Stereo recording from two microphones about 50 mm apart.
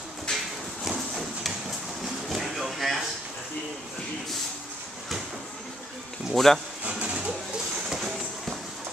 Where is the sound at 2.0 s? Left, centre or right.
Centre.